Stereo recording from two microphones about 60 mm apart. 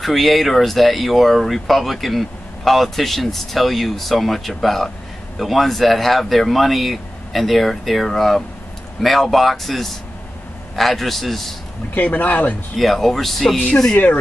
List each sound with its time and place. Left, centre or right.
0.0 s speech: centre
11.9 s speech: left
12.7 s speech: centre
13.9 s speech: left